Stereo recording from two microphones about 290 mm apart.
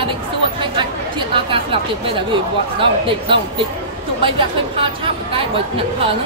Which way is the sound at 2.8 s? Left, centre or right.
Centre.